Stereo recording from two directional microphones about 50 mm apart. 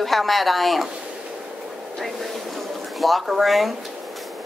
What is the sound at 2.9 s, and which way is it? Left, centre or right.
Speech, centre.